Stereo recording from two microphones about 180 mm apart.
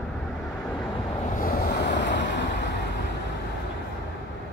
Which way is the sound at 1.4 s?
60° left (ahead or behind).